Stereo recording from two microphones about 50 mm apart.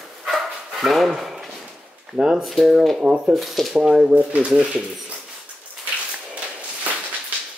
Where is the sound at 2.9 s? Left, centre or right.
Centre.